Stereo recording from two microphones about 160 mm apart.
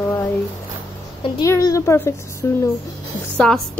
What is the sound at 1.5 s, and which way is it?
A woman's voice, 20° left (ahead or behind).